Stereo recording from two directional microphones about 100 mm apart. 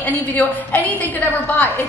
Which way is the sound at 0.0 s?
15° left (ahead or behind).